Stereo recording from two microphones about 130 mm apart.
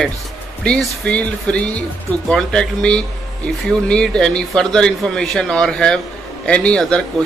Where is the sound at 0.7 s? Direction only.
10° left (ahead or behind).